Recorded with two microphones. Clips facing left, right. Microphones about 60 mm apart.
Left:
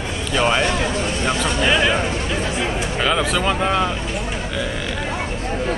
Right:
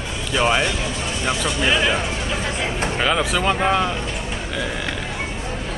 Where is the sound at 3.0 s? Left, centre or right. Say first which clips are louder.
Left 1 dB; centre.